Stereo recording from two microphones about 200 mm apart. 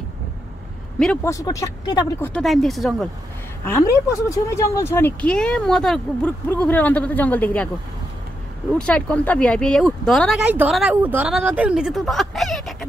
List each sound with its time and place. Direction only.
1.2 s speech: 15° left (ahead or behind)
2.3 s speech: centre (ahead or behind)
3.6 s speech: 15° left (ahead or behind)
8.8 s speech: 5° left (ahead or behind)